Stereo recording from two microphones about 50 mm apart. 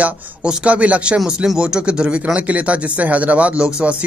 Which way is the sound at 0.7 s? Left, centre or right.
Right.